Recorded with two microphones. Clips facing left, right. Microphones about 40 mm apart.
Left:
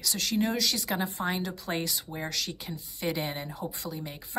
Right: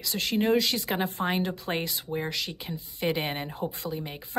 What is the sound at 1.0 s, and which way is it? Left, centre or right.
A woman's voice, right.